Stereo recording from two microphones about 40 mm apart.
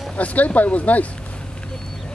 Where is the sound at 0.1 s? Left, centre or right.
Left.